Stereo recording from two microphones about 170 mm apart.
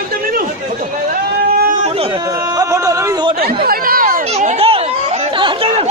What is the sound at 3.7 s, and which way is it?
Chatter, 60° right (ahead or behind).